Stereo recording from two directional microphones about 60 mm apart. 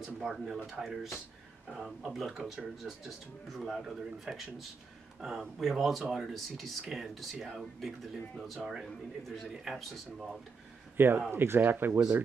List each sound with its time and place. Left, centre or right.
0.2 s speech: centre
11.0 s speech: right